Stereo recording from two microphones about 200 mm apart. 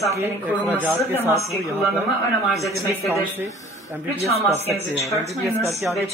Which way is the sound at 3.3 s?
10° right (ahead or behind).